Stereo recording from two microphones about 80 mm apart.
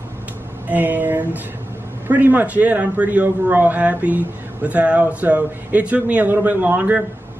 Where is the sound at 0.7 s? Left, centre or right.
Right.